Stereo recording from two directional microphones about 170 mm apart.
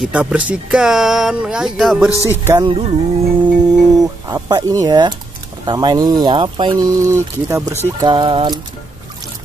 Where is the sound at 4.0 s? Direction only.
20° right (ahead or behind).